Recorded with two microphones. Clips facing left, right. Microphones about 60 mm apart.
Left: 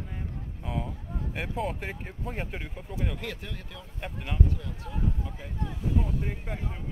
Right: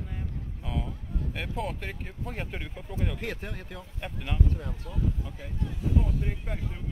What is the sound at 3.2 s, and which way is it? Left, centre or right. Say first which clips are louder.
Speech: right 2 dB; right.